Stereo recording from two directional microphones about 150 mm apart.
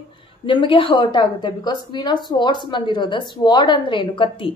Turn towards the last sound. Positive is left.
turn(degrees=35)  # may be behind; listen again after turning